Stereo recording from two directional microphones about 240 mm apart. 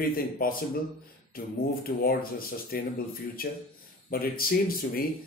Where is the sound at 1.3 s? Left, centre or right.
Left.